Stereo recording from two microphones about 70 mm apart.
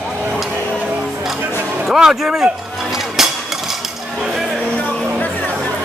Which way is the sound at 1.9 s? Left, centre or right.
Centre.